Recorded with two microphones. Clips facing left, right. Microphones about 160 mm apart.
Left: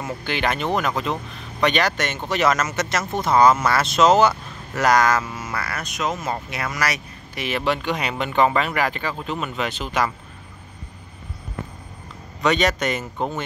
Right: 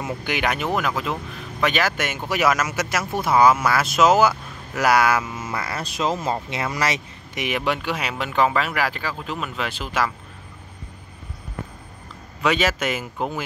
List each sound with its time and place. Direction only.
0.0 s speech: 10° right (ahead or behind)
5.3 s speech: 20° right (ahead or behind); by 10.1 s 5° right (ahead or behind)
12.4 s speech: 5° right (ahead or behind)